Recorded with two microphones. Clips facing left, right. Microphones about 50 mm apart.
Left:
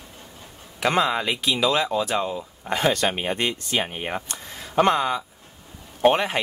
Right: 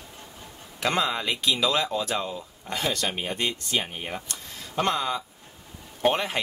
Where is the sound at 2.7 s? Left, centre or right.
Left.